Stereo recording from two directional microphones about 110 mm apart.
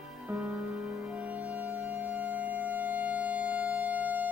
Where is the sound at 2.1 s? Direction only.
15° right (ahead or behind).